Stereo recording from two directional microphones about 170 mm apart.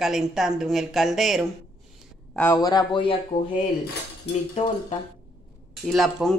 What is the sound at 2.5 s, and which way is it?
Speech, 25° left (ahead or behind).